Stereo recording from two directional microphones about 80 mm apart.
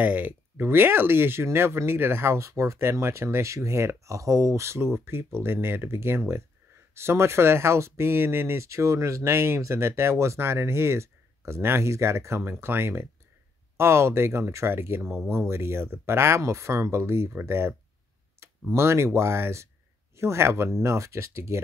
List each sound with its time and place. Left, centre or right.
0.0 s speech: right
18.4 s clicking: right
18.8 s speech: right